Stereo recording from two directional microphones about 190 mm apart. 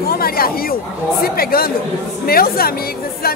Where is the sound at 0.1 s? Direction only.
50° left (ahead or behind).